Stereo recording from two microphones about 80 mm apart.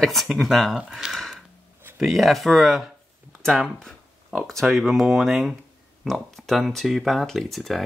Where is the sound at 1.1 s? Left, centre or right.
Centre.